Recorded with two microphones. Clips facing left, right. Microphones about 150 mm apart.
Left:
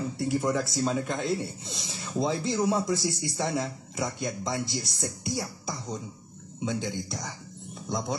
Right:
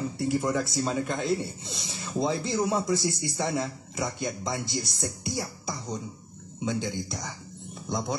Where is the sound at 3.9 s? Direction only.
Centre (ahead or behind).